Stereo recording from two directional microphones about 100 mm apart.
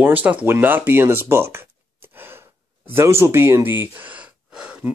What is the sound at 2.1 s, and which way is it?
Gasp, 20° right (ahead or behind).